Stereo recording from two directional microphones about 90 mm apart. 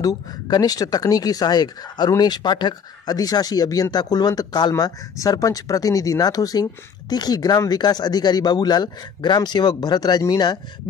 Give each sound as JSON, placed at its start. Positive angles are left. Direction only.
{"t": 0.0, "sound": "speech", "side_deg": 45}